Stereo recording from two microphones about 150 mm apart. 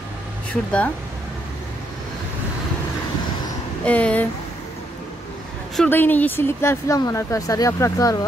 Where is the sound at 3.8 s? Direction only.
10° left (ahead or behind).